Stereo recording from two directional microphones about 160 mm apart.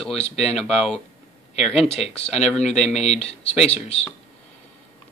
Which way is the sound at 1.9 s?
40° left (ahead or behind).